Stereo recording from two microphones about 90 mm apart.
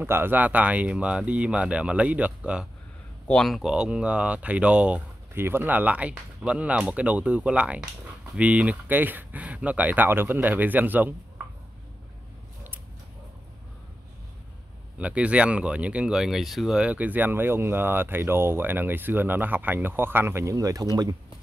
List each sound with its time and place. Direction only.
0.0 s speech: 25° right (ahead or behind)
3.3 s speech: 5° left (ahead or behind); by 5.0 s 15° right (ahead or behind)
5.3 s speech: 25° right (ahead or behind)
15.0 s speech: 15° right (ahead or behind)
20.5 s speech: 40° right (ahead or behind)